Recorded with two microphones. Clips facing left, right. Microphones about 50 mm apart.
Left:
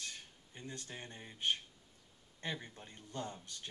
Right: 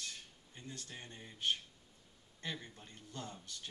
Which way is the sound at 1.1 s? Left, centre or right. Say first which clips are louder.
Even; centre.